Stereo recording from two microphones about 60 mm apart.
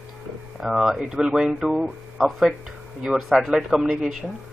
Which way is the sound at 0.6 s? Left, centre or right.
Centre.